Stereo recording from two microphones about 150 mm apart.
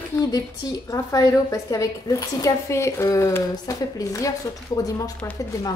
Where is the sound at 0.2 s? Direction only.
25° left (ahead or behind).